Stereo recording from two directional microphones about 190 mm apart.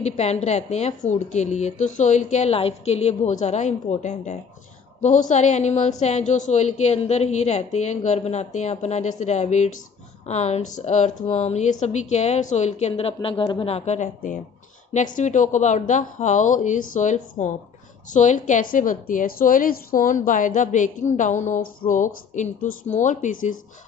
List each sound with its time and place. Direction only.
0.0 s a woman's voice: 35° left (ahead or behind)